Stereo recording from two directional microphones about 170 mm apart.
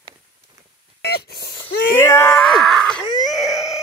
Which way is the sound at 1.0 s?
70° left (ahead or behind).